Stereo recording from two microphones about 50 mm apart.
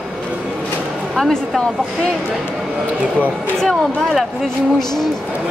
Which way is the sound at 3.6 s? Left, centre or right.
Centre.